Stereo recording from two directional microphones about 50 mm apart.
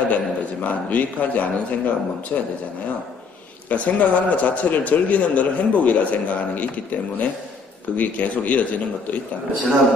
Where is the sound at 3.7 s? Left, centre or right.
Left.